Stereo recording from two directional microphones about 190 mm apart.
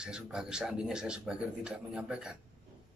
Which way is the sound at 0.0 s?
5° right (ahead or behind).